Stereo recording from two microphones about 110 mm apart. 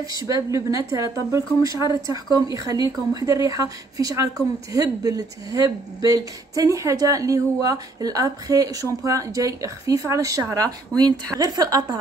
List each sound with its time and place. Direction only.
0.1 s speech: 30° right (ahead or behind)